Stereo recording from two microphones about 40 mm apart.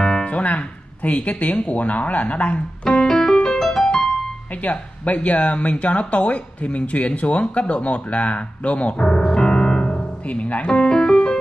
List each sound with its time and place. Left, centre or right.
0.0 s music: centre
0.3 s speech: left
3.0 s music: centre
4.6 s speech: left
10.9 s music: centre